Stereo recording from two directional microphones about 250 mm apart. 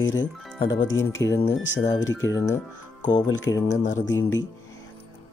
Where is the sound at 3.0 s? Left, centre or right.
Centre.